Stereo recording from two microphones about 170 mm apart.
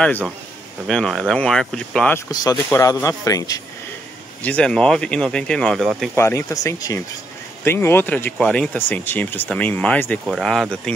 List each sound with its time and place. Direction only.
0.8 s speech: 5° left (ahead or behind)
2.1 s speech: 20° left (ahead or behind)
4.4 s speech: 10° left (ahead or behind)
6.1 s speech: 15° left (ahead or behind)
10.2 s speech: centre (ahead or behind)